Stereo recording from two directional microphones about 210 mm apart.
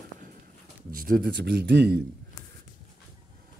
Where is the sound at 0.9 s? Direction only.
45° right (ahead or behind).